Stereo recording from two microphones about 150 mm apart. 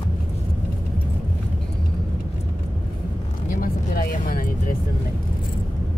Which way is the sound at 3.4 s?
70° left (ahead or behind).